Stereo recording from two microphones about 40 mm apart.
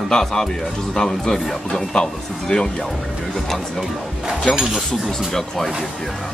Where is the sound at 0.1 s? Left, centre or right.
Centre.